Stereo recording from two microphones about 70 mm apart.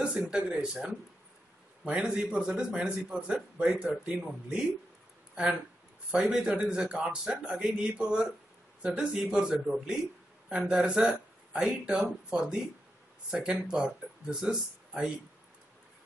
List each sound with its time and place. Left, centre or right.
0.0 s speech: centre
10.7 s speech: centre